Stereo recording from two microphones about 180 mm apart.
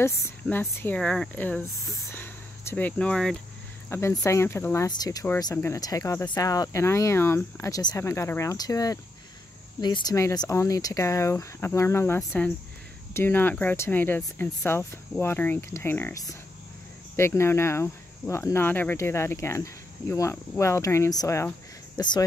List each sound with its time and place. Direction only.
0.2 s speech: 10° left (ahead or behind)
2.1 s a sound: 10° left (ahead or behind)
3.9 s speech: 15° left (ahead or behind)